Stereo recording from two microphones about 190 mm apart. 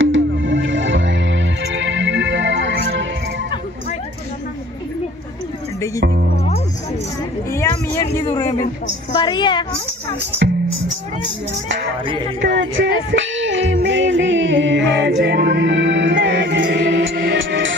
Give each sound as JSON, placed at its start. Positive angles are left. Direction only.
{"t": 0.0, "sound": "music", "side_deg": -85}
{"t": 6.3, "sound": "music", "side_deg": 35}
{"t": 7.5, "sound": "a sound", "side_deg": 15}
{"t": 9.1, "sound": "a woman's voice", "side_deg": 25}
{"t": 12.4, "sound": "music", "side_deg": -80}
{"t": 17.4, "sound": "music", "side_deg": -85}